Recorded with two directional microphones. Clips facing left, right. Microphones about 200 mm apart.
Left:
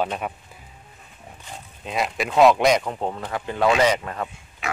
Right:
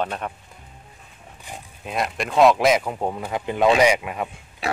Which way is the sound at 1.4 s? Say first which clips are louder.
Right 1 dB; centre (ahead or behind).